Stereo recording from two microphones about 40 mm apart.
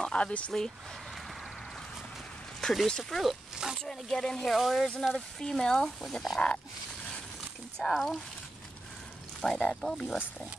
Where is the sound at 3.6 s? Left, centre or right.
Centre.